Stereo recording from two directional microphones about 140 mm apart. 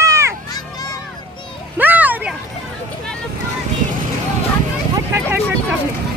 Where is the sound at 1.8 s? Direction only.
10° right (ahead or behind).